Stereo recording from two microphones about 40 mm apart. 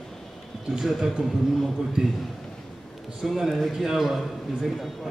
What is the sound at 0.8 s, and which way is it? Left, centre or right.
A man's voice, centre.